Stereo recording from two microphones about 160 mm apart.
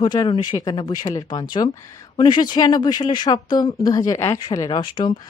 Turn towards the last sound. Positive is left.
turn(degrees=30)  # may be behind; listen again after turning